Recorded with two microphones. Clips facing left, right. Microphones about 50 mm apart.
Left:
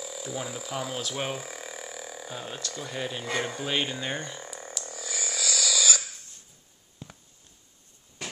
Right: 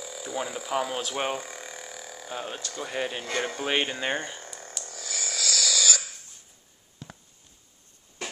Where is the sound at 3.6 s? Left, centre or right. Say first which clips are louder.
Right 3 dB; right.